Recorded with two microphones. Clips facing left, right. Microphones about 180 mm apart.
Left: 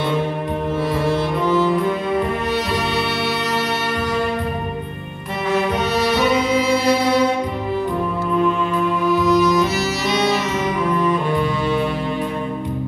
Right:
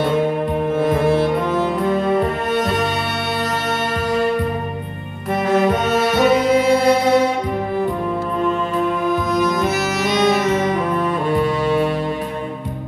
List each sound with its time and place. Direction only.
0.7 s music: 55° right (ahead or behind)
5.5 s music: 50° right (ahead or behind)
9.0 s music: 50° right (ahead or behind)